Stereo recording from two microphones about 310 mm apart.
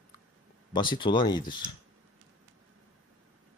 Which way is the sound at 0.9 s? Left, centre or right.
Centre.